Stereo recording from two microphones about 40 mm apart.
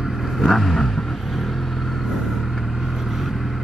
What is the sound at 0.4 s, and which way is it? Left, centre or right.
Vehicle, centre.